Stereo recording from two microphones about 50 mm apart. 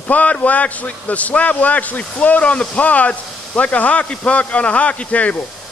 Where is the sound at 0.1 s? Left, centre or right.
Left.